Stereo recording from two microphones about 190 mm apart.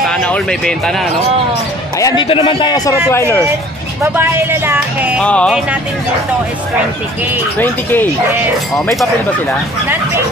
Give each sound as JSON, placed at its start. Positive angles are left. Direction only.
{"t": 0.0, "sound": "speech", "side_deg": 5}
{"t": 2.0, "sound": "a man's voice", "side_deg": 20}
{"t": 3.1, "sound": "speech", "side_deg": 10}
{"t": 4.0, "sound": "speech", "side_deg": -10}
{"t": 5.2, "sound": "music", "side_deg": 5}
{"t": 7.5, "sound": "speech", "side_deg": 10}